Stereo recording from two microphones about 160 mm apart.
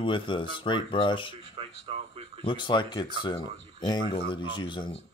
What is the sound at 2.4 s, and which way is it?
Speech, 30° left (ahead or behind).